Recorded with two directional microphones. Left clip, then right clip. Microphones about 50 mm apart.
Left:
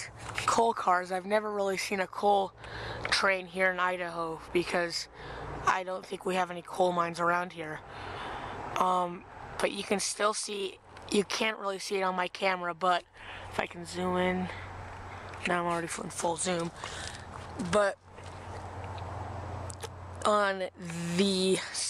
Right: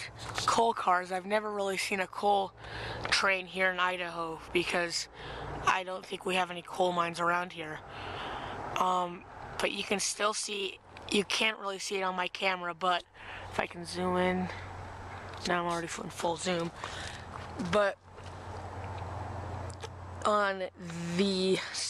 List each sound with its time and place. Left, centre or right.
0.5 s speech: left
13.6 s speech: centre
15.5 s speech: left
17.6 s speech: left
19.8 s speech: left